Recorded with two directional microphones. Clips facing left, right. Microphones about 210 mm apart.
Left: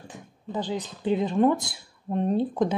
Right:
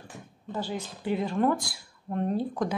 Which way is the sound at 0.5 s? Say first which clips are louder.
Left 3 dB; 20° left (ahead or behind).